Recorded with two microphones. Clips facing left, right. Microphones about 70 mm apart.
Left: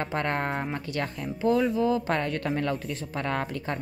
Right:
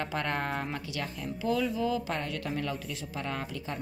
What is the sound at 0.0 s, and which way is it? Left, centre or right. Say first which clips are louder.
Speech: left 4 dB; left.